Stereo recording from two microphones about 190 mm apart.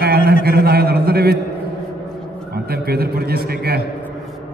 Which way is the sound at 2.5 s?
55° right (ahead or behind).